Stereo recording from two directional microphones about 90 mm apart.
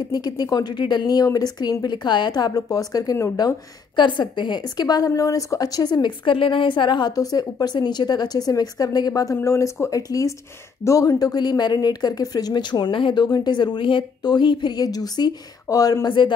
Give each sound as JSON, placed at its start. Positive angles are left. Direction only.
{"t": 0.1, "sound": "a woman's voice", "side_deg": 50}
{"t": 16.1, "sound": "a man's voice", "side_deg": 65}